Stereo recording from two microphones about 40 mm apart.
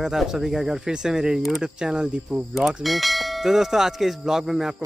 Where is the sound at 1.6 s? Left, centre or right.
Centre.